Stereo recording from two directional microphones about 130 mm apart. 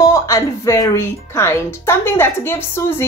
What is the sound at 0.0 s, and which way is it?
Speech, 25° left (ahead or behind).